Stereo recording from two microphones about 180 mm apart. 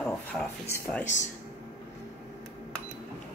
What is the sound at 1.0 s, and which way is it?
Speech, 40° left (ahead or behind).